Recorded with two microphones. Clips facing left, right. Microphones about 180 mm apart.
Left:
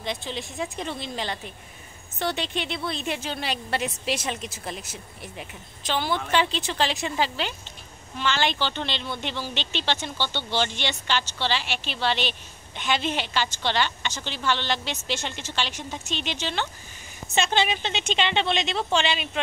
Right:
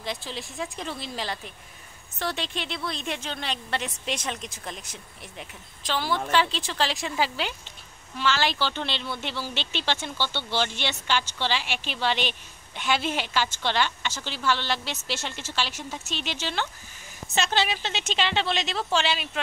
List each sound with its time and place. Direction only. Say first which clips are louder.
0.0 s speech: left 2 dB; centre (ahead or behind)